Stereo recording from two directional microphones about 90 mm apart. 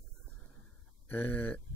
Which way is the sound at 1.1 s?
20° left (ahead or behind).